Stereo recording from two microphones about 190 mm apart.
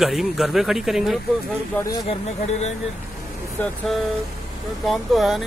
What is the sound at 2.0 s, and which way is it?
Speech, 35° left (ahead or behind).